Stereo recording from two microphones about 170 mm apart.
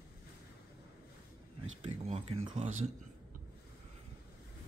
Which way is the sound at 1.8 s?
35° right (ahead or behind).